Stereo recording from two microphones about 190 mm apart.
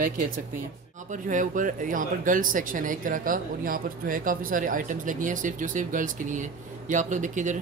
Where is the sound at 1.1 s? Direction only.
45° right (ahead or behind).